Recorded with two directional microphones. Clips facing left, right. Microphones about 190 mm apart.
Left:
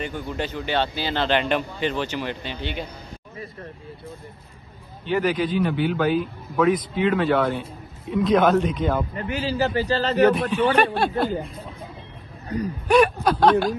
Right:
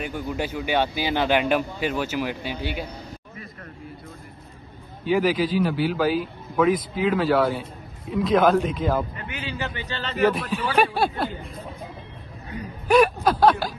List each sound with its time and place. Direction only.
0.0 s speech: 10° right (ahead or behind)
5.0 s a man's voice: 5° right (ahead or behind)
9.1 s a sound: 35° left (ahead or behind)
9.8 s speech: 35° left (ahead or behind)
10.2 s a man's voice: centre (ahead or behind)
12.8 s speech: centre (ahead or behind)